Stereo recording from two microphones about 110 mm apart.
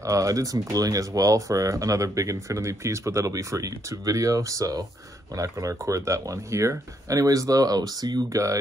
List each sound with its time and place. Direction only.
0.0 s speech: 30° right (ahead or behind)